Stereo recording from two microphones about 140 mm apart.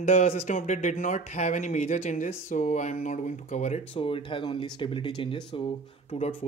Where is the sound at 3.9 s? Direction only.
40° left (ahead or behind).